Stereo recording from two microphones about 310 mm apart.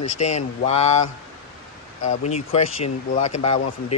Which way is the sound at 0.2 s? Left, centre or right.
Centre.